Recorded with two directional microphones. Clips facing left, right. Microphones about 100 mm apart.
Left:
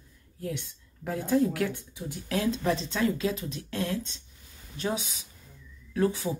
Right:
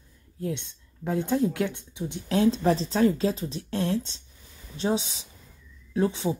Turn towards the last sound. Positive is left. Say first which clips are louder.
# right 1 dB
turn(degrees=-25)  # may be behind; listen again after turning